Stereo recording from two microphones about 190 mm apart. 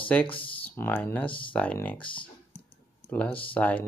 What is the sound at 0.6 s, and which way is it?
Speech, 10° left (ahead or behind).